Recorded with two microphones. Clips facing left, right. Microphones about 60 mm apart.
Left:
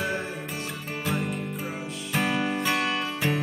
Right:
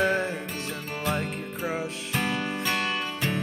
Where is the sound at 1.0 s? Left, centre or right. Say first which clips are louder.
Even; centre.